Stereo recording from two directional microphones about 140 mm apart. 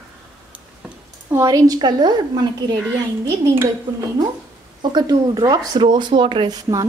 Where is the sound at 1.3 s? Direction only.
25° right (ahead or behind).